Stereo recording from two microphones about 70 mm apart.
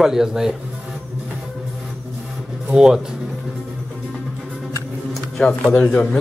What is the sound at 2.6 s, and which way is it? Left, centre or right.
Speech, centre.